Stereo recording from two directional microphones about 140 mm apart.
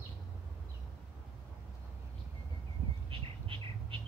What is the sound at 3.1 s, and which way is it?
Bird, 40° right (ahead or behind).